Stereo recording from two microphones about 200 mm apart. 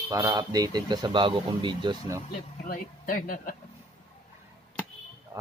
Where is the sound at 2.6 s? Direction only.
45° left (ahead or behind).